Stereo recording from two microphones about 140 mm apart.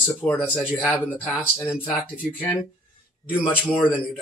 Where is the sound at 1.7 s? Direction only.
10° right (ahead or behind).